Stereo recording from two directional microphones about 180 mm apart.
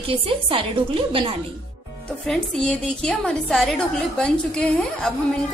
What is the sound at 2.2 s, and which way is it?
A woman's voice, 5° left (ahead or behind).